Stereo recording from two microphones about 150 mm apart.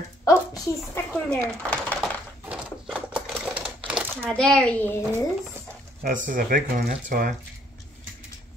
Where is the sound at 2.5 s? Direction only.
5° right (ahead or behind).